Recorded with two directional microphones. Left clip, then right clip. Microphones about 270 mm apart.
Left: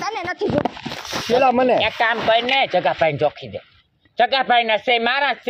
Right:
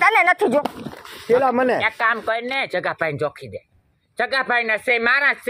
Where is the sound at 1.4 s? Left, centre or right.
Centre.